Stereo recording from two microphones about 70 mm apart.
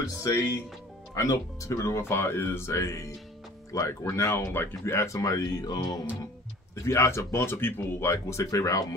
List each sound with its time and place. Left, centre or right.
0.0 s speech: left
6.7 s speech: left